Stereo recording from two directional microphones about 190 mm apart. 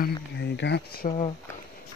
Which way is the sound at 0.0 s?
65° left (ahead or behind).